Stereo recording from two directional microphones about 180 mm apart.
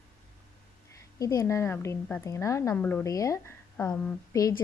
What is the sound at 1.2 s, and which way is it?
A woman's voice, 20° left (ahead or behind).